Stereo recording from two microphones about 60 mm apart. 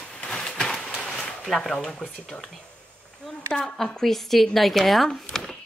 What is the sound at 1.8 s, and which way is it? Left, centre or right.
Speech, centre.